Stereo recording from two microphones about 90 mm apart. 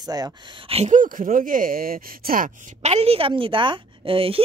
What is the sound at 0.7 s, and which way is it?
Speech, 90° right.